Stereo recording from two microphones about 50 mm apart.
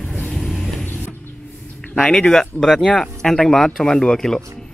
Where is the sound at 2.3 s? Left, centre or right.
Centre.